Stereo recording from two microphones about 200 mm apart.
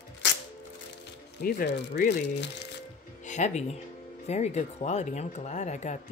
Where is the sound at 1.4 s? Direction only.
55° left (ahead or behind).